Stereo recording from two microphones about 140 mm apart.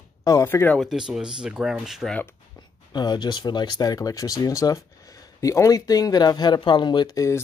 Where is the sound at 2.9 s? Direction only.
30° left (ahead or behind).